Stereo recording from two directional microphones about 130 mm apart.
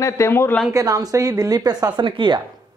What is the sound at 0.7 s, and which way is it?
A woman's voice, 25° right (ahead or behind).